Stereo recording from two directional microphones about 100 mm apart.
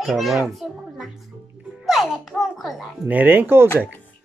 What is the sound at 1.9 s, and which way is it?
Babbling, 5° right (ahead or behind).